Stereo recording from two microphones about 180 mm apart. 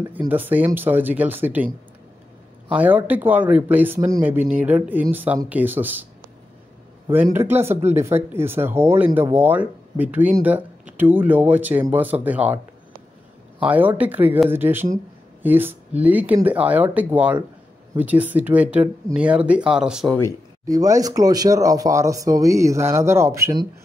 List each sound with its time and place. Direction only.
0.3 s speech: 10° right (ahead or behind)
2.7 s speech: 10° right (ahead or behind)
7.1 s speech: 10° right (ahead or behind)
20.6 s speech: 20° right (ahead or behind)